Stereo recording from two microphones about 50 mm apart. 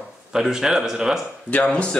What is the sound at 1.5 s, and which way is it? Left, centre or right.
Speech, left.